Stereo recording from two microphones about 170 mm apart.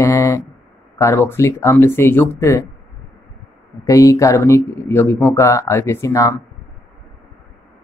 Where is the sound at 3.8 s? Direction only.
20° left (ahead or behind).